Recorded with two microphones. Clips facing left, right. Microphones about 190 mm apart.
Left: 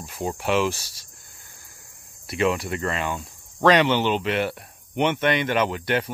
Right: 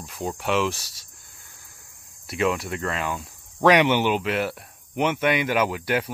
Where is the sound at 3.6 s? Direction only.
15° right (ahead or behind).